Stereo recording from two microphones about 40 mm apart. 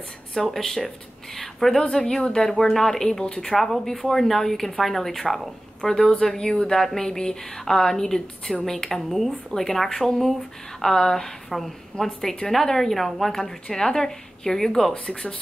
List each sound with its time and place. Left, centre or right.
0.3 s a woman's voice: centre
3.5 s a woman's voice: centre